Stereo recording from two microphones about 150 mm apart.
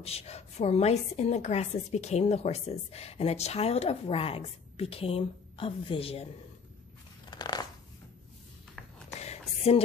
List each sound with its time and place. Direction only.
0.0 s a woman's voice: 45° left (ahead or behind)
7.2 s crunch: 30° left (ahead or behind)
9.1 s a sound: 45° left (ahead or behind)